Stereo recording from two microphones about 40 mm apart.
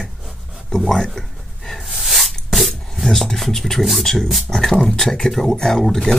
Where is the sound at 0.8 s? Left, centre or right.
Centre.